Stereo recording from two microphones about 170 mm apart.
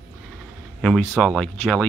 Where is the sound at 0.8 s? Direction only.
Centre (ahead or behind).